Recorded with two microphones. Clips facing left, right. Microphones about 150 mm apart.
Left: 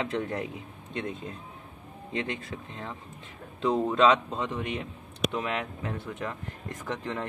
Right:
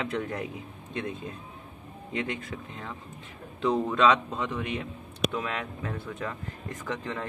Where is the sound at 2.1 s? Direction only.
25° left (ahead or behind).